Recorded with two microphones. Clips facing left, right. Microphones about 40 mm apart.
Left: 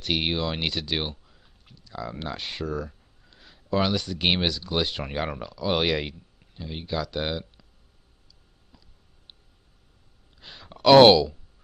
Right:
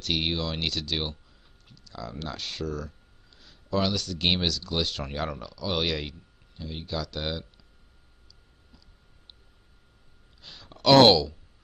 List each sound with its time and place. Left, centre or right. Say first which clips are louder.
0.0 s speech: left 2 dB; centre
10.4 s speech: left 4 dB; centre